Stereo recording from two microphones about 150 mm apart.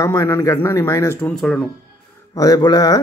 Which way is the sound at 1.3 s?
5° left (ahead or behind).